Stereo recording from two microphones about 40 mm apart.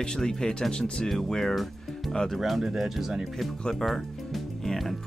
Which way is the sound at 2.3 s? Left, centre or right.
Centre.